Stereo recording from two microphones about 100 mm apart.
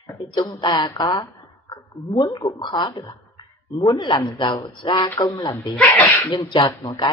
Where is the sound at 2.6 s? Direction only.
50° left (ahead or behind).